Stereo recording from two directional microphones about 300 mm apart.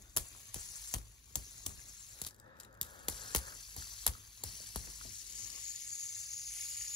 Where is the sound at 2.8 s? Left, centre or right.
Centre.